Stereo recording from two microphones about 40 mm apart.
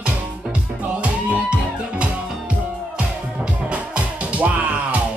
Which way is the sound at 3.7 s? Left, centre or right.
Right.